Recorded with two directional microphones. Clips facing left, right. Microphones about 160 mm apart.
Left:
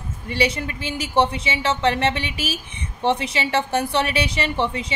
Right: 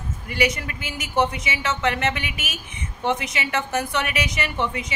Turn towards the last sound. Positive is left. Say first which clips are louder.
# left 3 dB
turn(degrees=30)  # may be behind; listen again after turning